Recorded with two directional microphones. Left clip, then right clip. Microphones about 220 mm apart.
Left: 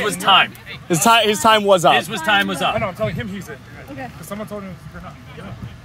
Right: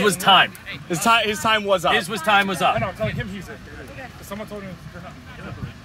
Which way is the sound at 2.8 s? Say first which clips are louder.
Left 3 dB; 20° left (ahead or behind).